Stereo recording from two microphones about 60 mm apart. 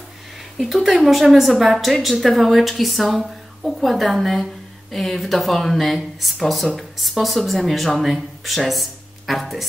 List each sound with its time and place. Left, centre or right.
0.8 s speech: centre